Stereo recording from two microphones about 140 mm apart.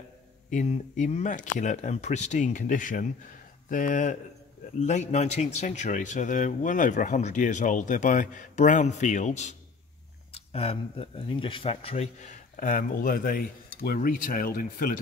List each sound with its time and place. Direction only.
0.5 s speech: 60° left (ahead or behind); by 15.0 s 85° left